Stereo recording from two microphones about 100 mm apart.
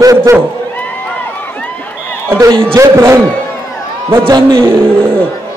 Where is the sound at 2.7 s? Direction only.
30° right (ahead or behind).